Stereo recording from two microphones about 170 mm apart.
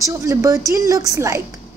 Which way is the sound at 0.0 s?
20° right (ahead or behind).